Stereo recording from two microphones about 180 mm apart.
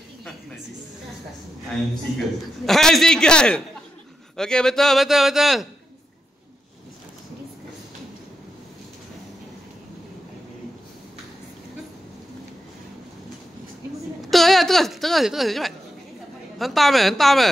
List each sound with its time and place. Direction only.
2.1 s a man's voice: centre (ahead or behind)
14.3 s a woman's voice: centre (ahead or behind)